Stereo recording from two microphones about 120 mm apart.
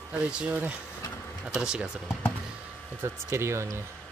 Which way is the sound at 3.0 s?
20° right (ahead or behind).